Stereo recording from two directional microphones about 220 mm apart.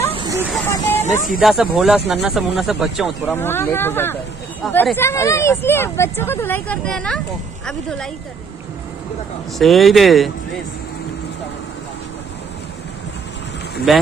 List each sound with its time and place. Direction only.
0.1 s snake: 20° right (ahead or behind)
0.9 s speech: 30° left (ahead or behind)
1.4 s speech: centre (ahead or behind)
3.3 s speech: 10° left (ahead or behind)
9.6 s speech: centre (ahead or behind)
13.9 s speech: centre (ahead or behind)